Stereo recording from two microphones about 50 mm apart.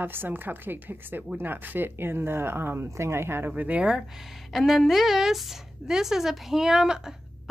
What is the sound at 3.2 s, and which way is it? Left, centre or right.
Speech, right.